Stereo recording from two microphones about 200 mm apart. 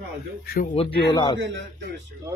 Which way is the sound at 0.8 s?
30° left (ahead or behind).